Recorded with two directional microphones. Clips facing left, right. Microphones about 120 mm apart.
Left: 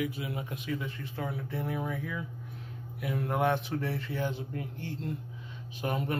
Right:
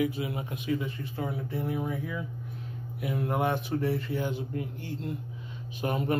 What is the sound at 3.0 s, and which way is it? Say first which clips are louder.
Speech: right 1 dB; 15° right (ahead or behind).